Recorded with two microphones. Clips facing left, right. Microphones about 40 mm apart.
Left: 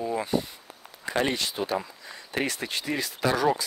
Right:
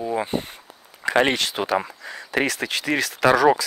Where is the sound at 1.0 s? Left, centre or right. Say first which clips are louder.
Right 7 dB; right.